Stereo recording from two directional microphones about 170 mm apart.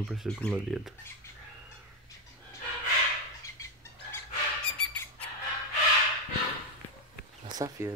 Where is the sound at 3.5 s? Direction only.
20° left (ahead or behind).